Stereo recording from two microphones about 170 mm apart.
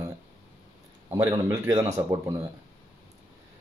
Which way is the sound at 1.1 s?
20° right (ahead or behind).